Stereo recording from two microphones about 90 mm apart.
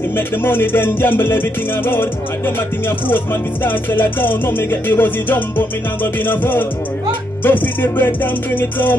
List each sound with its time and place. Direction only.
0.4 s music: 25° left (ahead or behind)
3.6 s music: 25° left (ahead or behind)